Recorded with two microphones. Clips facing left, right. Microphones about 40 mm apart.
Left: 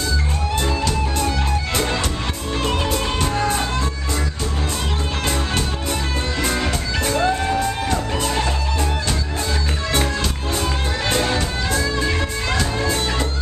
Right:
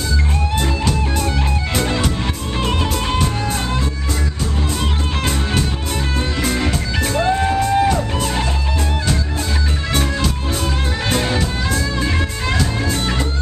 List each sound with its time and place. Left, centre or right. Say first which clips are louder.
0.6 s music: even; centre
6.4 s music: right 1 dB; centre
7.3 s music: right 5 dB; centre
7.9 s music: right 2 dB; centre
9.9 s music: right 2 dB; centre